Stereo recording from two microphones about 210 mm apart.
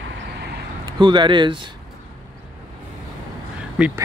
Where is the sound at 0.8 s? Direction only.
20° right (ahead or behind).